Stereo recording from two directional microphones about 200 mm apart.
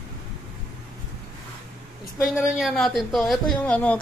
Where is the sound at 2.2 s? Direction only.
5° right (ahead or behind).